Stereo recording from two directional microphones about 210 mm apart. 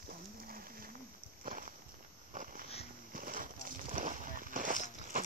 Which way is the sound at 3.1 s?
40° right (ahead or behind).